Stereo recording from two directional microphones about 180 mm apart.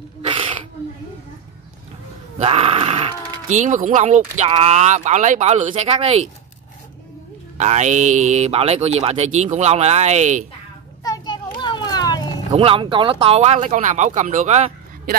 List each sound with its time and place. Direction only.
0.2 s a sound: 30° right (ahead or behind)
2.3 s speech: 35° right (ahead or behind)
7.5 s speech: 40° right (ahead or behind)
11.1 s children playing: 25° left (ahead or behind)
12.5 s speech: 30° right (ahead or behind)